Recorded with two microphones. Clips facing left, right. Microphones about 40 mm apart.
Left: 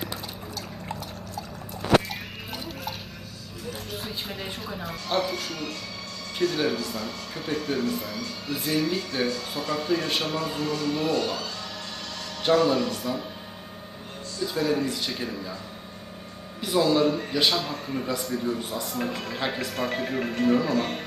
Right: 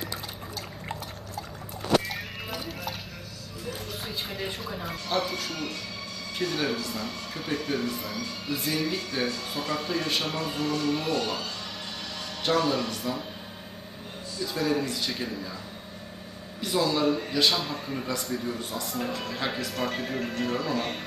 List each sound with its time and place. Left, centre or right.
2.0 s music: centre
4.3 s speech: centre
12.4 s speech: centre
14.4 s speech: centre
16.6 s speech: centre
20.1 s speech: centre
20.7 s speech: centre